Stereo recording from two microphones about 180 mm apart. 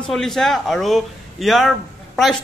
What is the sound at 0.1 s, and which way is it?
A man's voice, centre (ahead or behind).